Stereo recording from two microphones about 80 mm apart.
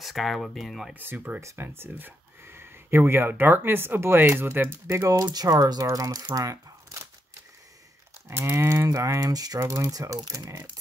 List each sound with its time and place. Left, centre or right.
0.0 s speech: centre
0.9 s speech: right
4.8 s cattle: right
5.2 s speech: right
6.3 s crumpling: right
8.3 s cattle: right
8.8 s speech: right
9.6 s speech: right